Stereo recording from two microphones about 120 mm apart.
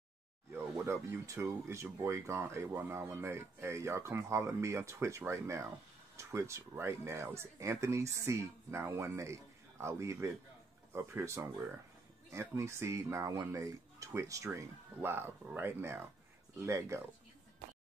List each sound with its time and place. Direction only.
0.8 s speech: 25° right (ahead or behind)